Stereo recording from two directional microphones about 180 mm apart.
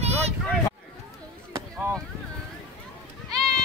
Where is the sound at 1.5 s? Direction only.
15° right (ahead or behind).